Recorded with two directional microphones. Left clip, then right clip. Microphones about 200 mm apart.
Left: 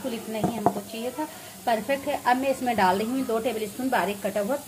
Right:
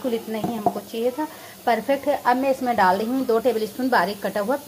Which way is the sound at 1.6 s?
25° right (ahead or behind).